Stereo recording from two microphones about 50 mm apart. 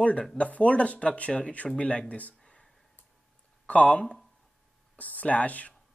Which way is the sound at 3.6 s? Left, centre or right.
Left.